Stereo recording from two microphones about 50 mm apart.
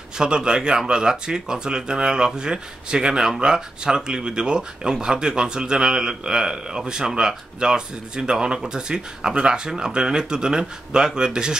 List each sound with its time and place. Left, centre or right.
0.2 s speech: centre